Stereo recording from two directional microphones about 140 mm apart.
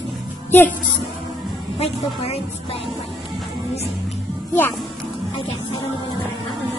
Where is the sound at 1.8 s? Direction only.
50° left (ahead or behind).